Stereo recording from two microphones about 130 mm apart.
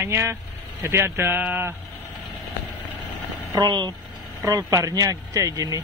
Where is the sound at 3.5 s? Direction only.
35° right (ahead or behind).